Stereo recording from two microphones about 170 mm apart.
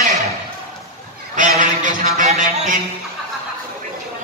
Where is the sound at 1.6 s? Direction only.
50° right (ahead or behind).